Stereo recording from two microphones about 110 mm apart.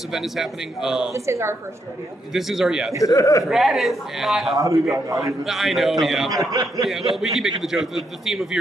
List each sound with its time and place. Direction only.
0.1 s a man's voice: 5° right (ahead or behind)
1.1 s a woman's voice: 25° right (ahead or behind)
2.3 s a man's voice: 5° right (ahead or behind)
3.0 s speech: 30° left (ahead or behind)
3.4 s a man's voice: 5° right (ahead or behind)
4.6 s a man's voice: 30° right (ahead or behind)
5.4 s a man's voice: centre (ahead or behind)
6.3 s a man's voice: 30° right (ahead or behind)
6.8 s a man's voice: centre (ahead or behind)